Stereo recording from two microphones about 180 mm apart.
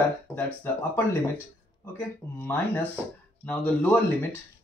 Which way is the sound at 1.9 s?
10° left (ahead or behind).